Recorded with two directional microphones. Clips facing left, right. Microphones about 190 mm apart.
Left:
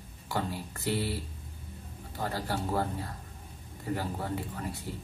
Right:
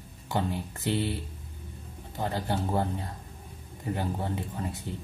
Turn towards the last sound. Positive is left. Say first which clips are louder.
# right 2 dB
turn(degrees=-20)  # may be behind; listen again after turning